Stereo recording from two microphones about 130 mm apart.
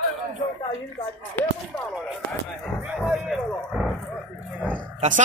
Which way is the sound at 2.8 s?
Centre (ahead or behind).